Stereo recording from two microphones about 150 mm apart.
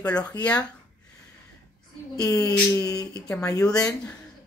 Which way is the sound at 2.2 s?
25° left (ahead or behind).